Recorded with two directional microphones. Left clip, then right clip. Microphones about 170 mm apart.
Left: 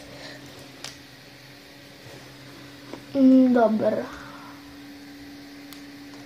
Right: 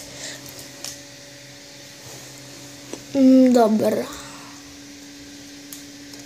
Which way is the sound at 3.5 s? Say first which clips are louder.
Right 3 dB; 60° right (ahead or behind).